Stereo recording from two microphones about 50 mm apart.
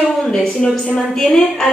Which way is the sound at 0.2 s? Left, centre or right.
Centre.